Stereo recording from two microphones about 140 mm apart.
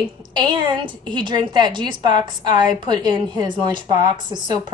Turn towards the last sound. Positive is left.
turn(degrees=-30)  # may be behind; listen again after turning